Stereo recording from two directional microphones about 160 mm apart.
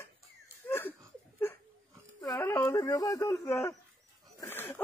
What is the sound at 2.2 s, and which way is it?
Speech, 20° left (ahead or behind).